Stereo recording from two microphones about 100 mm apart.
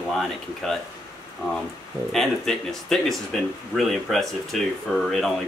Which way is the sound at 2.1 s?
5° left (ahead or behind).